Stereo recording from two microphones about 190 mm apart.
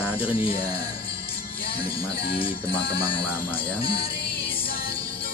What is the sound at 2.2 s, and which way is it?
Speech, 30° left (ahead or behind).